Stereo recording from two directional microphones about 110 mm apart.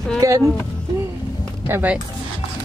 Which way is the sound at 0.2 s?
30° right (ahead or behind).